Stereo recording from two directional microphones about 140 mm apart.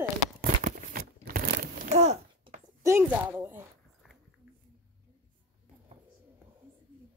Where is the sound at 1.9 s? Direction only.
50° right (ahead or behind).